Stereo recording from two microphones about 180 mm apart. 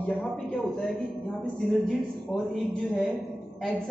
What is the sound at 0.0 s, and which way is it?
A man's voice, 5° left (ahead or behind).